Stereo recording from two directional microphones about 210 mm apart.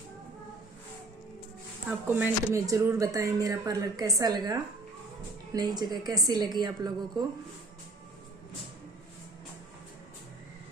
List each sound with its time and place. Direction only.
1.9 s a woman's voice: 10° right (ahead or behind)